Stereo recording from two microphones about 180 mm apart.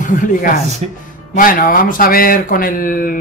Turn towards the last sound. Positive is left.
turn(degrees=50)  # may be behind; listen again after turning